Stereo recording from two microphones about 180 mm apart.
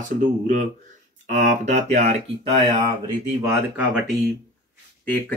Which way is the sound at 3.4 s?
10° right (ahead or behind).